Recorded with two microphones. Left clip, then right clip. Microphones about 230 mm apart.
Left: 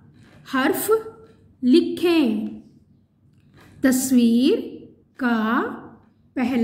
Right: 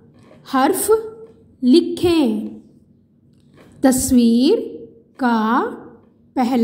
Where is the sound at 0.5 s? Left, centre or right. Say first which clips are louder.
Right 4 dB; centre.